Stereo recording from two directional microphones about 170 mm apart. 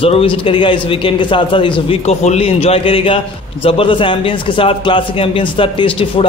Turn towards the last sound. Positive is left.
turn(degrees=30)  # may be behind; listen again after turning